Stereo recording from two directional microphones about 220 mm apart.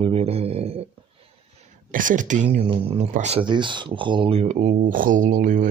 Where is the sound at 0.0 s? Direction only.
25° right (ahead or behind).